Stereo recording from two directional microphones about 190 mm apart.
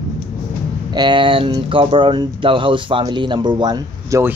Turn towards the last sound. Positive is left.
turn(degrees=-15)  # may be behind; listen again after turning